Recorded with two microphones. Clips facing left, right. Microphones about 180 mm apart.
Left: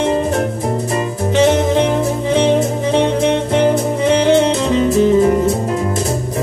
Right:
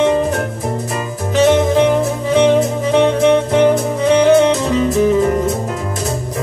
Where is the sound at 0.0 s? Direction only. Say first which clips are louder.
Right 1 dB; 35° left (ahead or behind).